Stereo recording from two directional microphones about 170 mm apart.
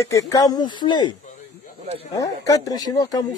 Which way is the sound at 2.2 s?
20° left (ahead or behind).